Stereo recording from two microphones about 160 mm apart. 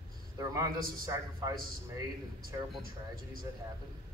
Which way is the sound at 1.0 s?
20° right (ahead or behind).